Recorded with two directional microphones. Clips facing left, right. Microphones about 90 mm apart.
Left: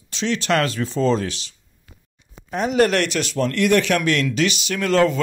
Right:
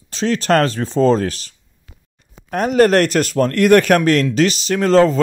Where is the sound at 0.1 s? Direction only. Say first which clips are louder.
Right 5 dB; 40° right (ahead or behind).